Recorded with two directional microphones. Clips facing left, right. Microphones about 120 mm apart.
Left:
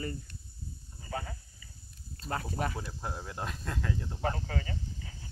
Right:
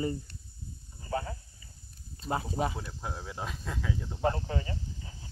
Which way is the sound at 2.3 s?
15° right (ahead or behind).